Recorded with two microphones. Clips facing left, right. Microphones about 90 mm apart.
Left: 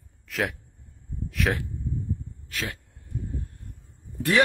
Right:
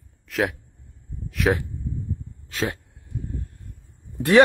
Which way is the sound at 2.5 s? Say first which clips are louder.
Right 7 dB; 25° right (ahead or behind).